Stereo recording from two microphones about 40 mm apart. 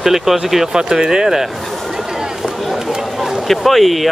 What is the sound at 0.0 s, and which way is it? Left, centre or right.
Speech, centre.